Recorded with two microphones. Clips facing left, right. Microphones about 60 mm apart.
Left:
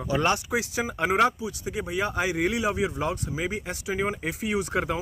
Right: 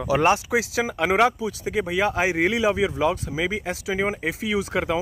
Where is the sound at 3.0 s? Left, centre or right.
Right.